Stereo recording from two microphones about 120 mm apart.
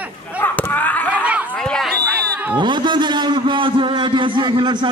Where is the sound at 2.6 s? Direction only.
40° right (ahead or behind).